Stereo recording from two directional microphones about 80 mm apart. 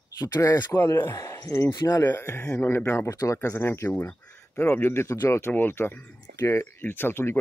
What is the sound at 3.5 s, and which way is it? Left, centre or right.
Speech, left.